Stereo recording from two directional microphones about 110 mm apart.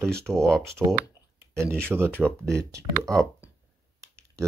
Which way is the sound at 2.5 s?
25° right (ahead or behind).